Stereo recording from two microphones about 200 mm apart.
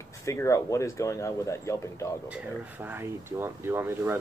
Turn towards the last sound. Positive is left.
turn(degrees=-10)  # may be behind; listen again after turning